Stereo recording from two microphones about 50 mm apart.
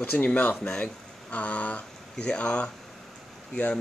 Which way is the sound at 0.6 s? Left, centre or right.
Left.